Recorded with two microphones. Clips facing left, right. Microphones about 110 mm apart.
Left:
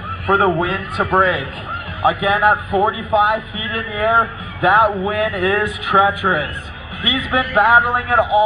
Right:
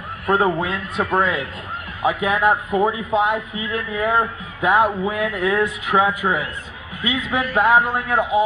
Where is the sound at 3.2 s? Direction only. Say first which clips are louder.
Left 3 dB; 75° left (ahead or behind).